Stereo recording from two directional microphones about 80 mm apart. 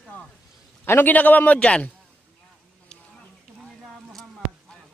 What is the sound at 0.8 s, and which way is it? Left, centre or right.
A man's voice, left.